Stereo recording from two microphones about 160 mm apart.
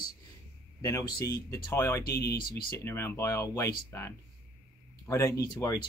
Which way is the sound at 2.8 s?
15° left (ahead or behind).